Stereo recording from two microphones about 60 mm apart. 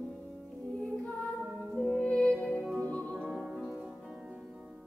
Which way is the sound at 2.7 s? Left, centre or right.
Left.